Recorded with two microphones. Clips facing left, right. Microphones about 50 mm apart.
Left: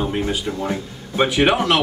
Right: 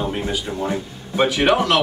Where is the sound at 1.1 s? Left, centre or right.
Centre.